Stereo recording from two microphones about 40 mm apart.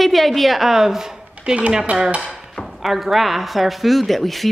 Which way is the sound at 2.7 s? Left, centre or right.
Centre.